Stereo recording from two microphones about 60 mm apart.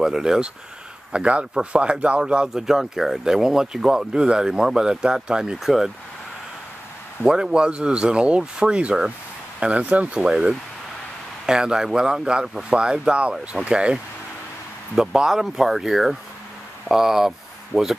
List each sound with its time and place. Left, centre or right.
0.0 s speech: centre
7.2 s speech: centre
15.0 s speech: centre